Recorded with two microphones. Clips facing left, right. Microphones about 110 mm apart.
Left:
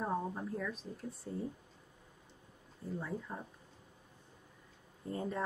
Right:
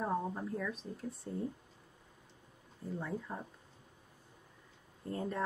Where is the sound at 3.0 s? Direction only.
Centre (ahead or behind).